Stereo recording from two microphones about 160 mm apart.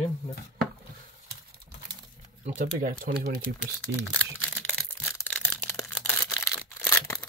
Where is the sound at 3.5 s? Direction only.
90° right.